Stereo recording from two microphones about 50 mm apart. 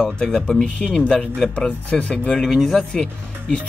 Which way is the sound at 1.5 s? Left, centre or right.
Left.